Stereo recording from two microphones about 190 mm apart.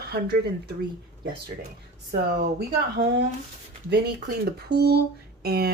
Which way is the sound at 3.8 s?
60° right (ahead or behind).